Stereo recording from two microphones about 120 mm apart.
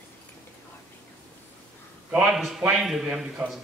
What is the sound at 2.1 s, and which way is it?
A man's voice, 5° right (ahead or behind).